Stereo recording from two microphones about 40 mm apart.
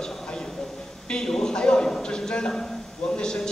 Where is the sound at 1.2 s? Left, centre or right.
Centre.